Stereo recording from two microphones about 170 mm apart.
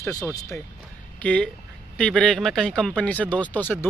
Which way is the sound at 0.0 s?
20° left (ahead or behind).